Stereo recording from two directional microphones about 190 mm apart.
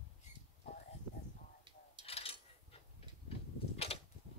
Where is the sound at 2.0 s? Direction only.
30° left (ahead or behind).